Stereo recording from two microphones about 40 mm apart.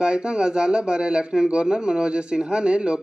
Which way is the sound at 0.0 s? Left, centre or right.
Right.